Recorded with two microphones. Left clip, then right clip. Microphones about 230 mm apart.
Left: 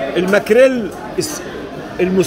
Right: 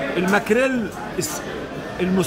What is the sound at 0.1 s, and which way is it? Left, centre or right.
A man's voice, centre.